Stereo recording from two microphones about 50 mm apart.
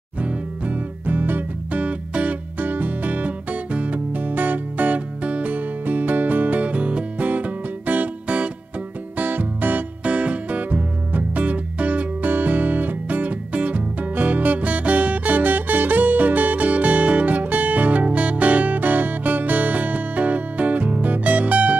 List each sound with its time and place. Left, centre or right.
0.2 s music: right
1.8 s music: right